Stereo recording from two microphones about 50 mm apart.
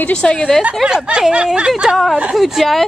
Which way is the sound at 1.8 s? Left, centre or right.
Centre.